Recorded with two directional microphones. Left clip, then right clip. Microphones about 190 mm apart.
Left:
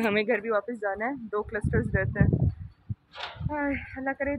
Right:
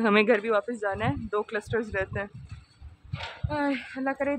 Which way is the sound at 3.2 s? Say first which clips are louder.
Left 1 dB; 60° left (ahead or behind).